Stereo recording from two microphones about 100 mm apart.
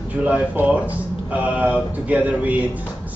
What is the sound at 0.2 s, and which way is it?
A man's voice, 10° right (ahead or behind).